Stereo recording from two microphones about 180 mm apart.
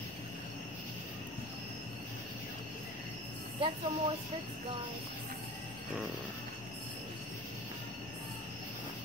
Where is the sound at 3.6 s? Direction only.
35° right (ahead or behind).